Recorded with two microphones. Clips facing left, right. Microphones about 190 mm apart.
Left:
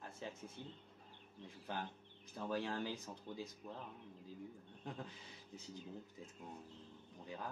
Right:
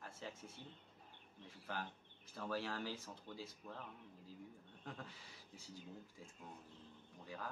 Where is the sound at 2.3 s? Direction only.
20° left (ahead or behind).